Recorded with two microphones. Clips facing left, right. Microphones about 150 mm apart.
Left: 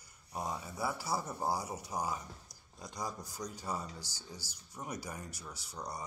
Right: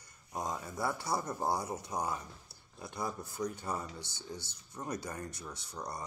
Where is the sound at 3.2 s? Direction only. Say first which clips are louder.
Right 6 dB; 30° right (ahead or behind).